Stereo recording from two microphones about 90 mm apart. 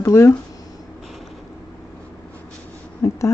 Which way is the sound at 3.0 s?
35° left (ahead or behind).